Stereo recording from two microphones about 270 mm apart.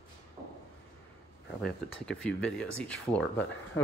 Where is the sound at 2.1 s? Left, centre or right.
Left.